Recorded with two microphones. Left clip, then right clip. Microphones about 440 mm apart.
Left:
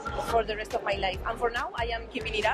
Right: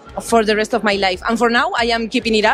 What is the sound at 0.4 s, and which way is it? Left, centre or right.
Speech, right.